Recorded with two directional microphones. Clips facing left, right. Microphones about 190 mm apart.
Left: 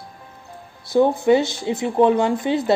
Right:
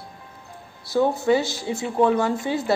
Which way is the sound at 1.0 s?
20° left (ahead or behind).